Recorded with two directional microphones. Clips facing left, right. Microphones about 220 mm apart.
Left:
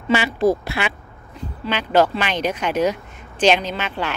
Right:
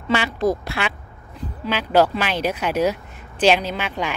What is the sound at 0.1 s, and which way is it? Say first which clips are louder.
Speech: left 3 dB; 5° left (ahead or behind).